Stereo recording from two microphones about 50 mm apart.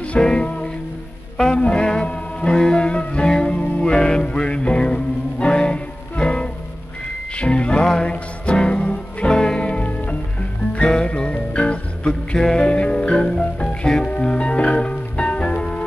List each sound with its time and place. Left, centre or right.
0.2 s music: centre
1.5 s music: centre
10.8 s music: centre